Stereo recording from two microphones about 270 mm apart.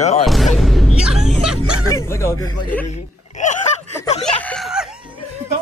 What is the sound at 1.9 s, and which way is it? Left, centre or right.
Speech, centre.